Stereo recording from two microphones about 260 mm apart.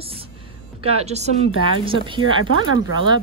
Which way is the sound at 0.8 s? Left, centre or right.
Right.